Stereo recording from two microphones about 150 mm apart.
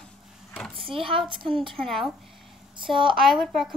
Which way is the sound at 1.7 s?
Centre (ahead or behind).